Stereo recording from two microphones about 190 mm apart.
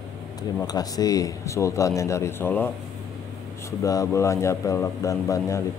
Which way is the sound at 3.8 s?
15° left (ahead or behind).